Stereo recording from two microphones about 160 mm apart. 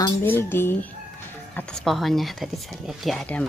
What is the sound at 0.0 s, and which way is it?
Speech, 15° left (ahead or behind).